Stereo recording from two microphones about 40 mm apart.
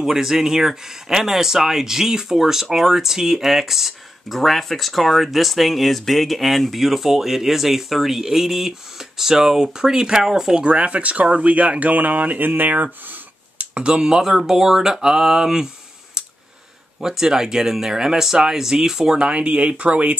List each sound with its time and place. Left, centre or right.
0.0 s speech: centre
10.6 s speech: right
13.7 s speech: right
17.0 s speech: centre
19.1 s speech: right